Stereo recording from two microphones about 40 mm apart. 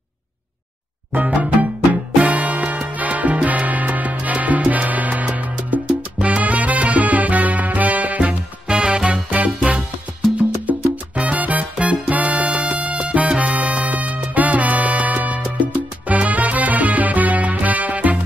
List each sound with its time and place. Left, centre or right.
1.1 s music: right
8.2 s music: right
10.3 s salsa music: right